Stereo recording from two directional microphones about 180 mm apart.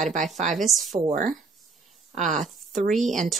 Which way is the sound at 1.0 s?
45° right (ahead or behind).